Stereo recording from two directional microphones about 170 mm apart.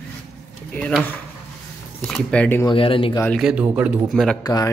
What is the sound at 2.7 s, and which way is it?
Speech, 30° left (ahead or behind).